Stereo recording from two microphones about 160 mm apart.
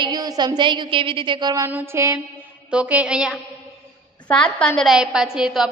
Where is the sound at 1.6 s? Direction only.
15° right (ahead or behind).